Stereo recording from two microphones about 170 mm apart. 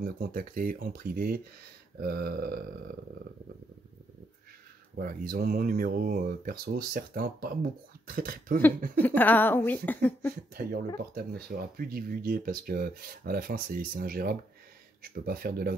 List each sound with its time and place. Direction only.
0.0 s speech: 55° right (ahead or behind)
4.9 s speech: 60° right (ahead or behind)
9.0 s speech: 10° left (ahead or behind)
10.5 s speech: 65° right (ahead or behind)